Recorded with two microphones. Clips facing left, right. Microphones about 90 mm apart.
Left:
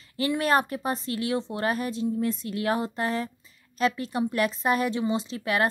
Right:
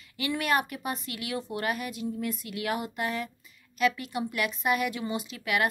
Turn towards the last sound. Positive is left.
turn(degrees=30)  # may be behind; listen again after turning